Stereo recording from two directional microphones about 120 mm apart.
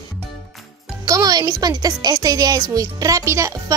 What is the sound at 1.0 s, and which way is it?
A woman's voice, 30° right (ahead or behind).